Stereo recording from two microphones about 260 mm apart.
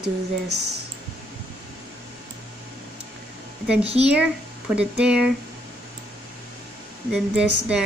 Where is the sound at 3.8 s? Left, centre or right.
Right.